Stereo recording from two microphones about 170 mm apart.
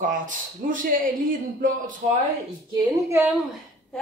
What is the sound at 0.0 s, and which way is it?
A man's voice, 50° right (ahead or behind).